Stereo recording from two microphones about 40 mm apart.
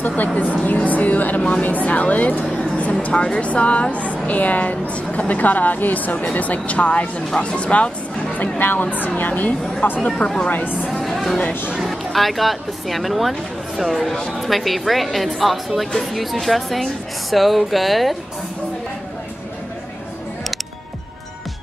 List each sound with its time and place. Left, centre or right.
0.0 s a woman's voice: left
2.5 s a sound: left
3.3 s a woman's voice: left
9.9 s speech: left
10.9 s music: centre
11.8 s a woman's voice: centre